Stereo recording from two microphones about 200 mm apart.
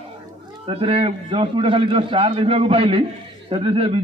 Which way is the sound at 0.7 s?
30° right (ahead or behind).